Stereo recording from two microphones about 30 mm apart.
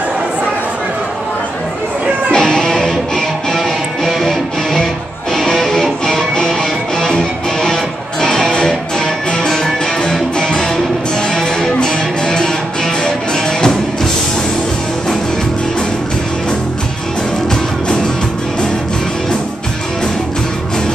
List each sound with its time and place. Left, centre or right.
2.3 s music: left
2.9 s music: centre
5.3 s music: centre
17.8 s music: left